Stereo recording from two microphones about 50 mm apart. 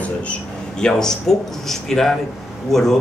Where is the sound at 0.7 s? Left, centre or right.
Centre.